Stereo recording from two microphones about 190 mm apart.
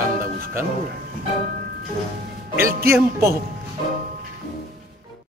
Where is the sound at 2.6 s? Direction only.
50° right (ahead or behind).